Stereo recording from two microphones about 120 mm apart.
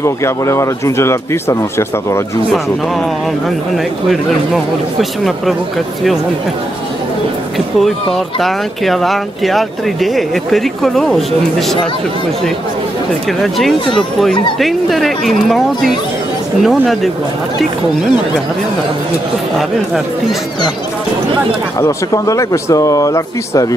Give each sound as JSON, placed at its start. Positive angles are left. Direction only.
{"t": 0.0, "sound": "speech", "side_deg": 25}
{"t": 3.4, "sound": "speech", "side_deg": 0}
{"t": 7.5, "sound": "speech", "side_deg": 0}
{"t": 13.4, "sound": "speech", "side_deg": 0}
{"t": 21.7, "sound": "speech", "side_deg": 25}